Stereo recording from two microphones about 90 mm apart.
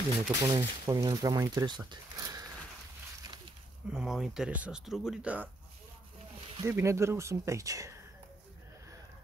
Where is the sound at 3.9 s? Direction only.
5° right (ahead or behind).